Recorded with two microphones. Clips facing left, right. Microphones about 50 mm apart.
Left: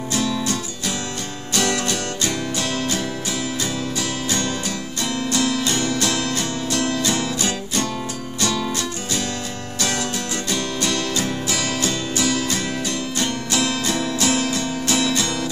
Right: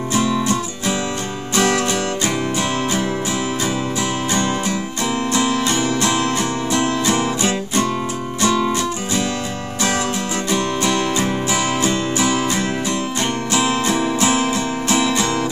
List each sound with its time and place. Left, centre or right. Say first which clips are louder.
0.1 s music: right 4 dB; right
4.3 s music: right 5 dB; right
10.5 s music: right 5 dB; right